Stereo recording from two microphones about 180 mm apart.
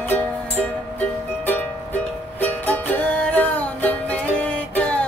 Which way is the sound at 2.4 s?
10° left (ahead or behind).